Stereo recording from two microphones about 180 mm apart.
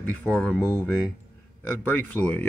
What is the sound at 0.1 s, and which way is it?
Speech, 5° left (ahead or behind).